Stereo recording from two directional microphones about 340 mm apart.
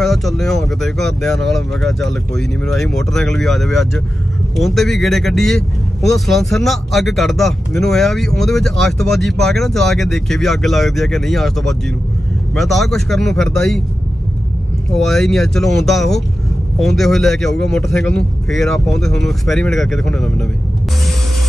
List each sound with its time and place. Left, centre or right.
0.0 s speech: centre
15.0 s speech: centre